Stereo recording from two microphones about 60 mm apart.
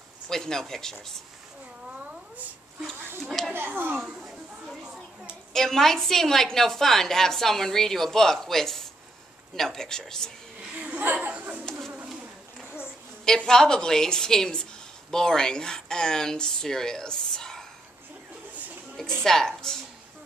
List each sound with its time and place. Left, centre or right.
0.3 s speech: centre
1.9 s cat: right
3.5 s speech: right
4.8 s a sound: centre
5.5 s speech: centre
10.7 s laughter: right
11.3 s insect: right
13.5 s speech: centre
19.2 s speech: centre